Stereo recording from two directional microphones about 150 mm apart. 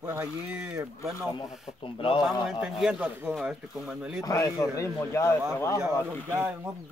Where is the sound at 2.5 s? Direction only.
5° right (ahead or behind).